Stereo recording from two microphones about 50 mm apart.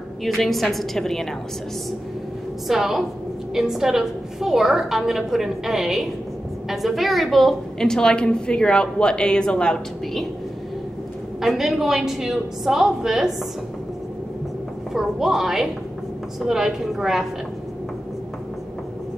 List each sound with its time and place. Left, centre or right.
0.2 s a woman's voice: centre
2.7 s a woman's voice: centre
7.8 s a woman's voice: centre
11.4 s a woman's voice: centre
14.9 s a woman's voice: centre